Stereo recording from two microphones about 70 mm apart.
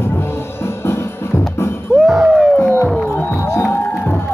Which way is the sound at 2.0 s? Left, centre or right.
Centre.